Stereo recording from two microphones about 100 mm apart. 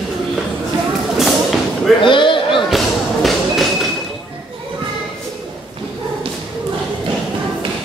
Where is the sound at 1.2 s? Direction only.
Centre (ahead or behind).